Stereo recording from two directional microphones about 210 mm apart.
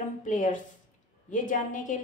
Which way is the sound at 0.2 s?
35° left (ahead or behind).